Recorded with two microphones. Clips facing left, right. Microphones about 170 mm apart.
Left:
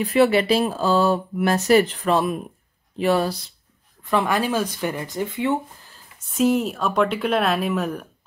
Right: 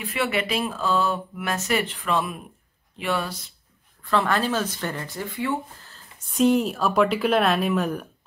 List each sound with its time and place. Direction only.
0.0 s speech: 35° left (ahead or behind)
4.0 s speech: 15° left (ahead or behind)
6.3 s speech: centre (ahead or behind)